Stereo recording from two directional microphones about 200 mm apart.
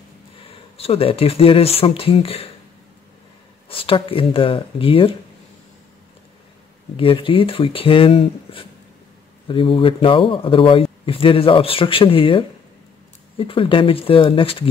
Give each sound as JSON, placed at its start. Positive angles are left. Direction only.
{"t": 0.7, "sound": "speech", "side_deg": 30}
{"t": 3.6, "sound": "speech", "side_deg": 25}
{"t": 7.0, "sound": "speech", "side_deg": 25}